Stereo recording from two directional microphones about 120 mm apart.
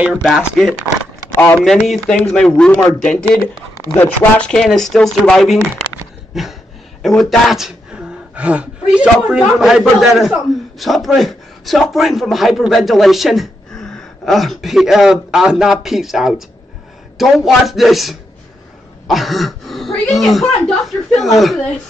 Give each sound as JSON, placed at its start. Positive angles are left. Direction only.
{"t": 0.0, "sound": "a man's voice", "side_deg": -5}
{"t": 1.3, "sound": "speech", "side_deg": 20}
{"t": 1.9, "sound": "a man's voice", "side_deg": 5}